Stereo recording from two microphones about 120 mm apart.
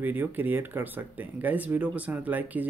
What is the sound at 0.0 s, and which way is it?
Speech, 15° right (ahead or behind).